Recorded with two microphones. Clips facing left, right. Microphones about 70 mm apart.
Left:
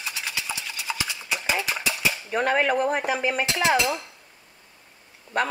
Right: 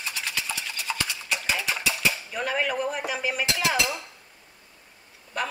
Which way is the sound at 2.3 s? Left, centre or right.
Left.